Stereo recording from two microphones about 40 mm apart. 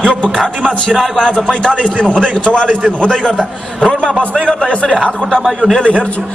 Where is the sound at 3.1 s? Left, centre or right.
Centre.